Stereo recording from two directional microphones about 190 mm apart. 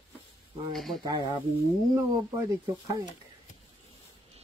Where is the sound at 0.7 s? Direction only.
Centre (ahead or behind).